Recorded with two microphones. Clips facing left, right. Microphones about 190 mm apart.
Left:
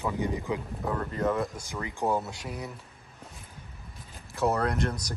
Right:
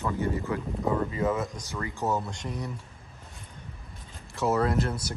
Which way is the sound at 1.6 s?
15° left (ahead or behind).